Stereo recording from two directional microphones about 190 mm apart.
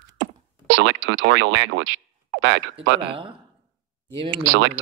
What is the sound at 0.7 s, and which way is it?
Speech, 75° right (ahead or behind).